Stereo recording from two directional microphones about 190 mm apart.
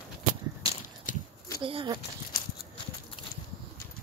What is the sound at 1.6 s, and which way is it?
Speech, 25° right (ahead or behind).